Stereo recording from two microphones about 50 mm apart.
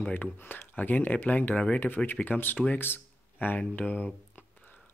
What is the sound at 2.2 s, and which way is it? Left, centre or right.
Speech, left.